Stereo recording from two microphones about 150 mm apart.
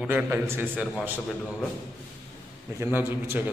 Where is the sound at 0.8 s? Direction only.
5° right (ahead or behind).